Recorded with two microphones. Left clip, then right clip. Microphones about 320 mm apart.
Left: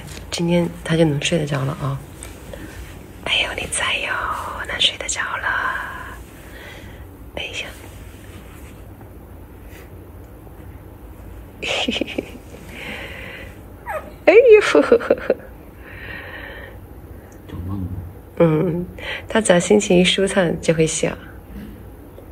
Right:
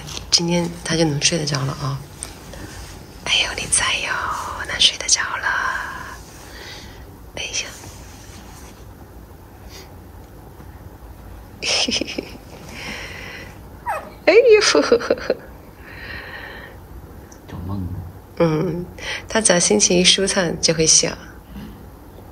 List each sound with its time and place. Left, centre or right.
0.0 s speech: centre
3.3 s whispering: centre
7.3 s whispering: centre
11.6 s a sound: centre
18.4 s speech: centre